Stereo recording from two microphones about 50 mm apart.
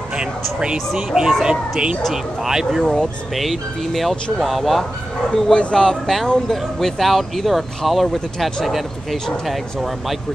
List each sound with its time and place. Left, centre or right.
1.4 s speech: centre
5.3 s speech: centre